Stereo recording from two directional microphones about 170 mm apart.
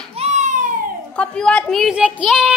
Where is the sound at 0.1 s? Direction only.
40° right (ahead or behind).